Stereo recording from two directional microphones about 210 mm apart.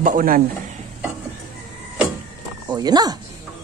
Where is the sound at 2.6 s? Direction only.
20° right (ahead or behind).